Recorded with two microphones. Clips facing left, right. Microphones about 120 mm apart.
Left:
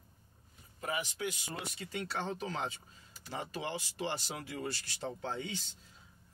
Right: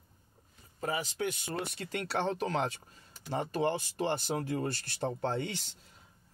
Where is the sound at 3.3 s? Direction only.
50° right (ahead or behind); by 5.7 s 70° right (ahead or behind).